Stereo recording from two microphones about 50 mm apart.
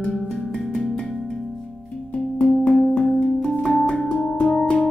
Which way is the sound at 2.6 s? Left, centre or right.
Left.